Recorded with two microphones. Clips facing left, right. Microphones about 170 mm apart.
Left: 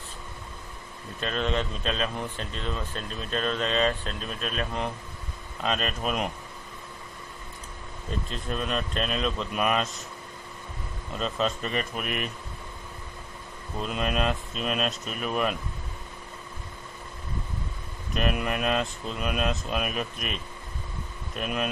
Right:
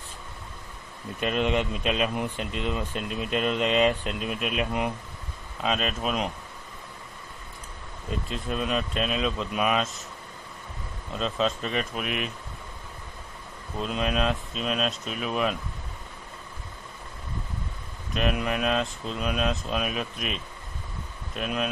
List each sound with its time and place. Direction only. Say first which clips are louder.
1.2 s speech: right 3 dB; 15° right (ahead or behind); by 6.3 s centre (ahead or behind)
8.3 s speech: right 3 dB; 5° right (ahead or behind)
11.1 s speech: right 1 dB; centre (ahead or behind)
13.7 s speech: right 1 dB; centre (ahead or behind)
18.1 s speech: right 1 dB; centre (ahead or behind)
21.4 s speech: right 1 dB; centre (ahead or behind)